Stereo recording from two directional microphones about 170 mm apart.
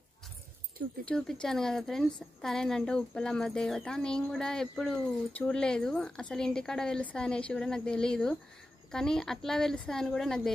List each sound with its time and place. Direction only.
1.0 s a woman's voice: 5° left (ahead or behind)